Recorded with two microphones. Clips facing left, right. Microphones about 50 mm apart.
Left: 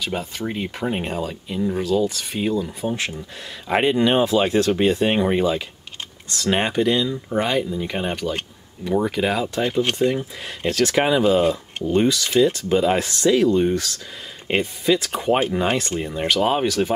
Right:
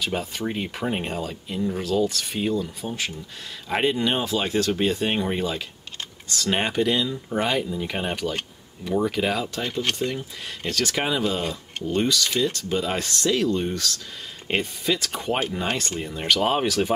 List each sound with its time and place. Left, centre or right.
0.0 s speech: centre
2.8 s speech: left
16.2 s speech: centre